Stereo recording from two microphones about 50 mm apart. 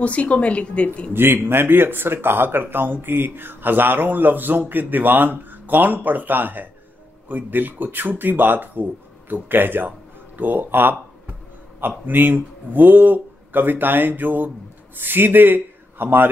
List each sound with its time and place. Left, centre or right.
0.0 s speech: left
1.1 s a man's voice: right